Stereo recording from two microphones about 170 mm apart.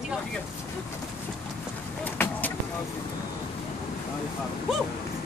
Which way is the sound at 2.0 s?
10° left (ahead or behind).